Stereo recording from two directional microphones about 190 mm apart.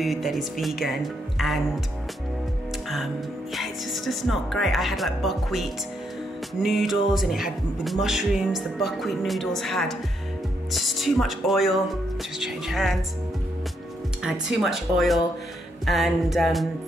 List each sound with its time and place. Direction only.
0.0 s music: centre (ahead or behind)
3.5 s music: centre (ahead or behind)
14.2 s music: centre (ahead or behind)